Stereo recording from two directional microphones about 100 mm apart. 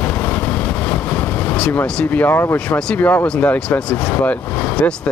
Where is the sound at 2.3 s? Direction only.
20° left (ahead or behind).